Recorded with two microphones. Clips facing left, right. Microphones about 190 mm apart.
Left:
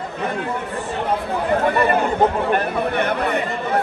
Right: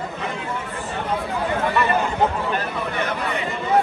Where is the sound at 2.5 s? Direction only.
55° left (ahead or behind).